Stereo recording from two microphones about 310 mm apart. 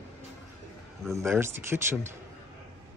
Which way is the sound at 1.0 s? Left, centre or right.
Centre.